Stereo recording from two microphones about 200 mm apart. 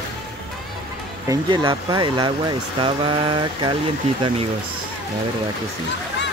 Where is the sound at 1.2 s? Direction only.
25° right (ahead or behind).